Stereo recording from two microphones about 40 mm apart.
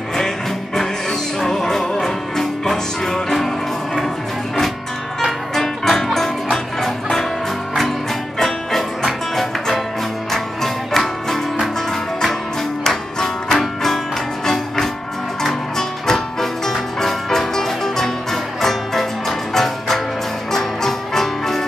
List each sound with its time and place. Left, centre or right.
1.4 s music: centre
5.5 s music: centre
8.4 s music: centre
12.8 s music: centre
16.1 s music: centre